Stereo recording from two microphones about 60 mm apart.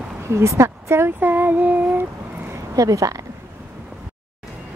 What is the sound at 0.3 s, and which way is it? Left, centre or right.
Speech, right.